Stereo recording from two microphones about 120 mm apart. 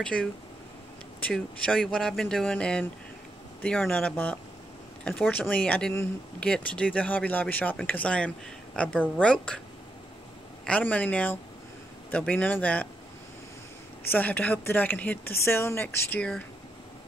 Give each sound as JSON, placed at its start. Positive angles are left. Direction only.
{"t": 0.0, "sound": "speech", "side_deg": 10}
{"t": 5.5, "sound": "speech", "side_deg": 10}
{"t": 10.6, "sound": "speech", "side_deg": 10}
{"t": 14.1, "sound": "speech", "side_deg": 15}